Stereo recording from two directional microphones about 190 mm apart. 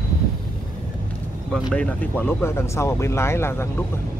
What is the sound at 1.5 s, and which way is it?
Speech, 5° left (ahead or behind).